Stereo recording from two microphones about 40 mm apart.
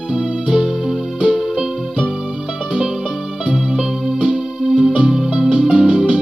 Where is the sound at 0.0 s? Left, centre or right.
Centre.